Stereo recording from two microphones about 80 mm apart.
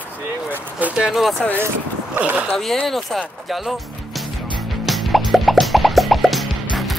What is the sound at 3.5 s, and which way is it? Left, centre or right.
Music, centre.